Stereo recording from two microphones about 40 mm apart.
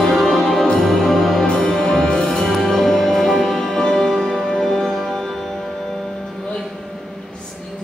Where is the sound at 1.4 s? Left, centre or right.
Centre.